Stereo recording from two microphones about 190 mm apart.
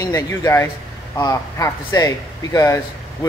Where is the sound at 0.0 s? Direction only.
15° left (ahead or behind).